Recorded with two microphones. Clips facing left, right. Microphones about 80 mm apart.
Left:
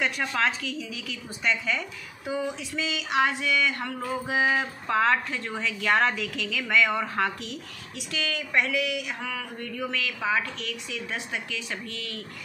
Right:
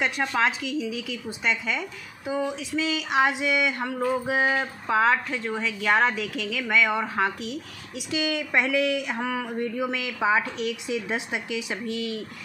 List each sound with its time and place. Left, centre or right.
0.0 s a woman's voice: centre
8.7 s speech: right; by 12.2 s centre